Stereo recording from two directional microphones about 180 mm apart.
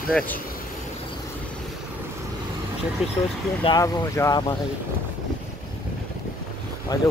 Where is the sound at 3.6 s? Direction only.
20° left (ahead or behind).